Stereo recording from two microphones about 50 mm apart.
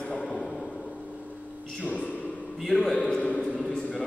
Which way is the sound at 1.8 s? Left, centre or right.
Left.